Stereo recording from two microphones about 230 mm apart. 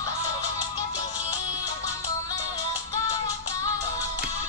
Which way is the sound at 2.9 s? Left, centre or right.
Centre.